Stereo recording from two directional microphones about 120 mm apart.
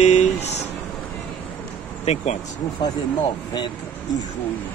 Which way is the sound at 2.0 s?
65° left (ahead or behind).